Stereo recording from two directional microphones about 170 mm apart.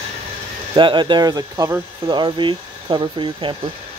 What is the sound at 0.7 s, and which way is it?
Speech, 25° right (ahead or behind).